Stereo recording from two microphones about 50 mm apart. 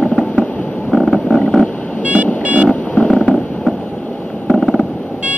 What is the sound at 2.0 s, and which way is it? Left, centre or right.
Vehicle, right.